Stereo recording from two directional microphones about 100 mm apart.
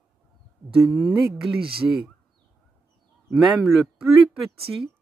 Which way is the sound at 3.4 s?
5° right (ahead or behind).